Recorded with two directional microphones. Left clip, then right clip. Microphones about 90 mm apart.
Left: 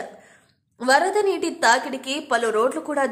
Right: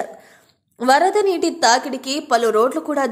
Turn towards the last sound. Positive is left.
turn(degrees=-35)  # may be behind; listen again after turning